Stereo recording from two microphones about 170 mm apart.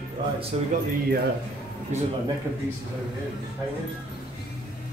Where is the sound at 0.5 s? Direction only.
40° right (ahead or behind).